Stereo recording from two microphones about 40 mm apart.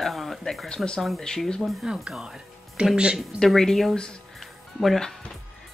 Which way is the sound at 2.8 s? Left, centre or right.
Right.